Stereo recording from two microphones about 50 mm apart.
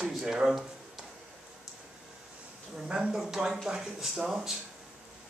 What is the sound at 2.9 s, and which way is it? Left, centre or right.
Speech, centre.